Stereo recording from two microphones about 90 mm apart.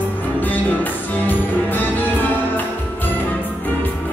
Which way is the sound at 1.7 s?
20° left (ahead or behind).